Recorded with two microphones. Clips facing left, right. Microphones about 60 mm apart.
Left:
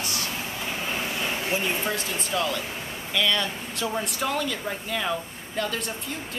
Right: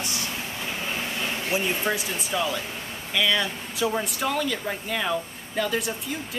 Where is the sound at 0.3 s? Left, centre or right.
Centre.